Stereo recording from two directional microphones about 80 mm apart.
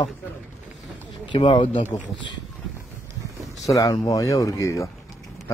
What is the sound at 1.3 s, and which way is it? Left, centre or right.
Speech, left.